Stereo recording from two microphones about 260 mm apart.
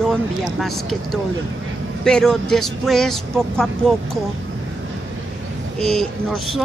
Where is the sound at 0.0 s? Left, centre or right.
Centre.